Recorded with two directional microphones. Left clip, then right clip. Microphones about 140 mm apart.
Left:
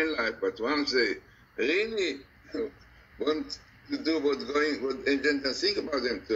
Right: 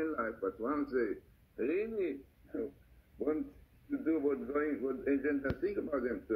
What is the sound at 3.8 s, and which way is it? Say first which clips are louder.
A man's voice: left 5 dB; 60° left (ahead or behind).